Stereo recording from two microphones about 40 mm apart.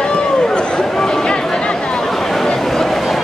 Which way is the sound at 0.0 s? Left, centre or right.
Centre.